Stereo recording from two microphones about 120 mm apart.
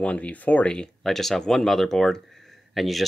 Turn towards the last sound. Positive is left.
turn(degrees=0)  # may be behind; listen again after turning